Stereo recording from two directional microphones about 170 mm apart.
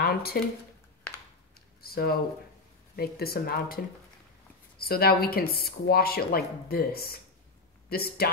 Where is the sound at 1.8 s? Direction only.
65° left (ahead or behind).